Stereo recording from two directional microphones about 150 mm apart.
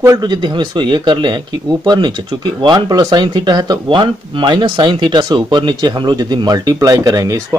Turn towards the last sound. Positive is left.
turn(degrees=-20)  # may be behind; listen again after turning